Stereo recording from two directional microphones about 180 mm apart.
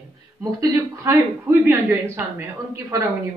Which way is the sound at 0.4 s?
20° right (ahead or behind).